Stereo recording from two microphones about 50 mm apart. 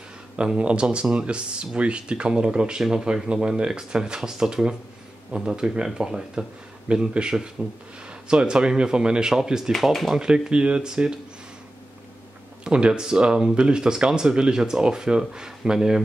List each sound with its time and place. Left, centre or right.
0.4 s speech: right
9.7 s speech: centre
10.1 s speech: centre
12.6 s speech: centre